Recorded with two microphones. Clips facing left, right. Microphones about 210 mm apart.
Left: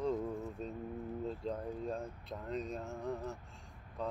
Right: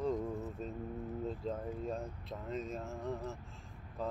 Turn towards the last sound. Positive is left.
turn(degrees=-5)  # may be behind; listen again after turning